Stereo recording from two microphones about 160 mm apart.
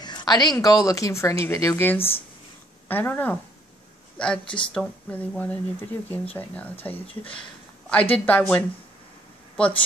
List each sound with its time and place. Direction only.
0.0 s speech: 25° left (ahead or behind); by 3.3 s 10° left (ahead or behind)
4.7 s speech: 5° left (ahead or behind)